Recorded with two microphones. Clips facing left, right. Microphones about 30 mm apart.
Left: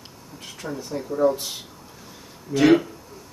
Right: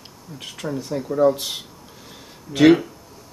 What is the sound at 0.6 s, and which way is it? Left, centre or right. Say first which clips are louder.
Speech: right 5 dB; right.